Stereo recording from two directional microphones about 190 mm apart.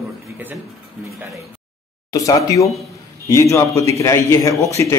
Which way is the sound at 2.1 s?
15° left (ahead or behind).